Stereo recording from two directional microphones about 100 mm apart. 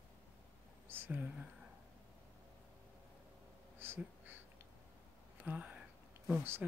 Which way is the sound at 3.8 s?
20° right (ahead or behind).